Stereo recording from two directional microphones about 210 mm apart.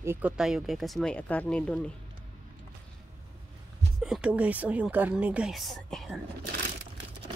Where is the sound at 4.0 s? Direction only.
5° right (ahead or behind).